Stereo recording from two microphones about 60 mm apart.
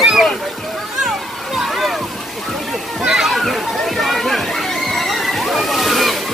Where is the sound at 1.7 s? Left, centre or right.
Centre.